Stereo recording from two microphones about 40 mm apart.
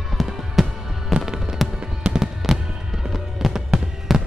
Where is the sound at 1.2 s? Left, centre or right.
Centre.